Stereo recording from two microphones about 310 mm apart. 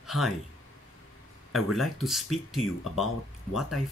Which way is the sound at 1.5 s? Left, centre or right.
Centre.